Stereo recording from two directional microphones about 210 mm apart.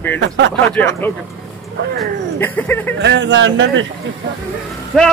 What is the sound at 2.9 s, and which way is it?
Speech, 55° right (ahead or behind).